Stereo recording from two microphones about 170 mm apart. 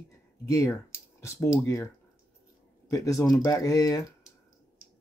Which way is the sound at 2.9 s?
20° left (ahead or behind).